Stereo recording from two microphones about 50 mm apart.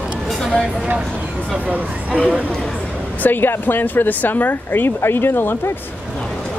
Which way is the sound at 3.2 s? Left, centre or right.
Left.